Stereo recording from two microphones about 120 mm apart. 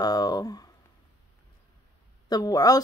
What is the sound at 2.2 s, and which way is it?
Speech, 30° left (ahead or behind).